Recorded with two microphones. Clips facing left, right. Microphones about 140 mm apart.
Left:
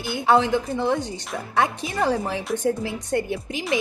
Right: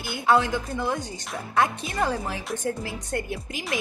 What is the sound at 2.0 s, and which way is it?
A woman's voice, 20° left (ahead or behind).